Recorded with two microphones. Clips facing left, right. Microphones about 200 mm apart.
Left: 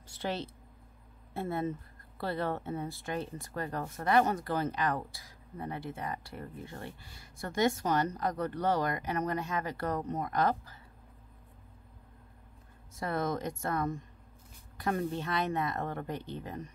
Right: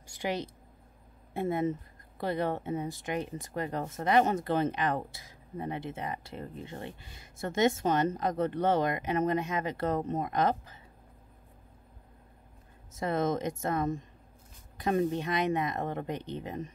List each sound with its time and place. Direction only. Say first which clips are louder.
0.0 s a sound: right 2 dB; 15° right (ahead or behind)
1.3 s speech: right 4 dB; 15° right (ahead or behind)
12.9 s speech: right 4 dB; 20° right (ahead or behind)